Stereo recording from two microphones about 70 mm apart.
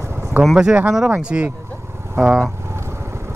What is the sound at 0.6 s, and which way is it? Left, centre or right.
Speech, centre.